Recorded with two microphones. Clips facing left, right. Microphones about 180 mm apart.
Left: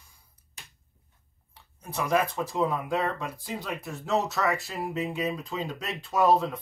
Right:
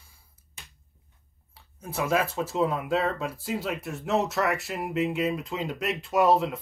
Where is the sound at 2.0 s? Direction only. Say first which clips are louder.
Even; 5° right (ahead or behind).